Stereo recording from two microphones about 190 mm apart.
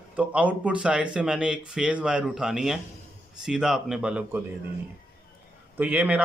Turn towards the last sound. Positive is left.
turn(degrees=-5)  # may be behind; listen again after turning